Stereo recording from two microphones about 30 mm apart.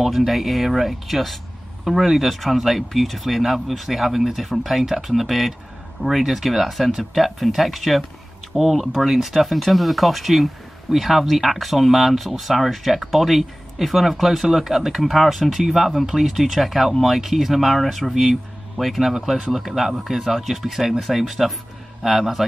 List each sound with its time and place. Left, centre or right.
0.0 s speech: centre
8.5 s speech: centre
17.7 s speech: centre